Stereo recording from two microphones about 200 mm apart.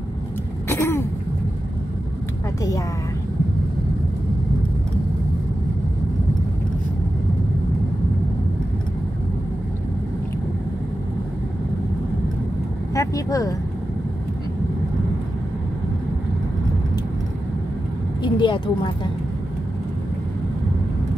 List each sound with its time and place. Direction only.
0.7 s throat clearing: 15° left (ahead or behind)
12.9 s vehicle: 15° left (ahead or behind)
18.2 s a woman's voice: 25° left (ahead or behind)